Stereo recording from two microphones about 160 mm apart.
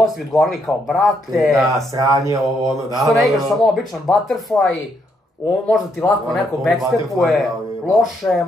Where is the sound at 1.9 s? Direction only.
20° right (ahead or behind).